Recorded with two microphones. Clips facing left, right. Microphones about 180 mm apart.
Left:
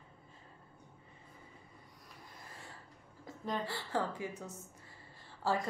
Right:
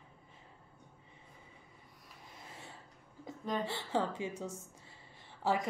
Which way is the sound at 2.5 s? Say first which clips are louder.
Right 2 dB; 20° right (ahead or behind).